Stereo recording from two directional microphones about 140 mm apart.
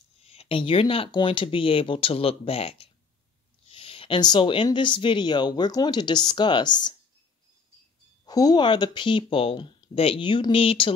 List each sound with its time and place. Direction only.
0.2 s speech: 45° left (ahead or behind)
8.3 s speech: 30° left (ahead or behind)